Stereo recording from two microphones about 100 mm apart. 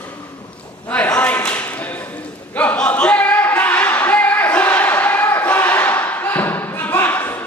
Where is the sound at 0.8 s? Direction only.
15° left (ahead or behind).